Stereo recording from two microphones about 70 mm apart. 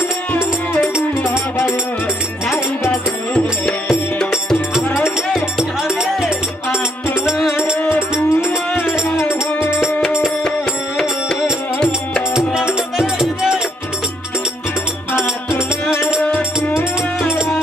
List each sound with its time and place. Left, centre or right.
4.8 s music: left
5.9 s music: centre
7.8 s music: left
12.7 s music: centre
15.1 s music: left
16.2 s music: left